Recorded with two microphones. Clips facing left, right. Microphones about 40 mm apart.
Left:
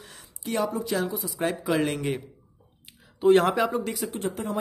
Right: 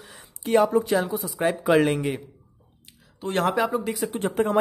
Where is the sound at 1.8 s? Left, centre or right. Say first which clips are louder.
Right 5 dB; centre.